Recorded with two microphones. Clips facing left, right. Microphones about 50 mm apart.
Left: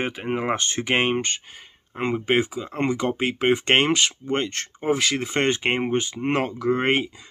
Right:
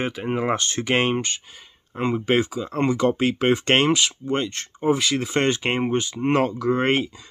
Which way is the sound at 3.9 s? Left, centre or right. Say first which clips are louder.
Right 1 dB; left.